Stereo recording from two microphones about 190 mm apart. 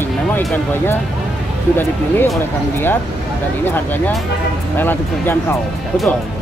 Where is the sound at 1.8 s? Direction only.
10° left (ahead or behind).